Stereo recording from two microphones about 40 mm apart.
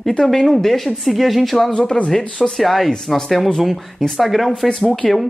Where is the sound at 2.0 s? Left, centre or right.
Centre.